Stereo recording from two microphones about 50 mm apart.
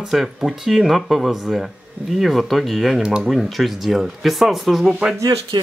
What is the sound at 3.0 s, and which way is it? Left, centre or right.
Speech, centre.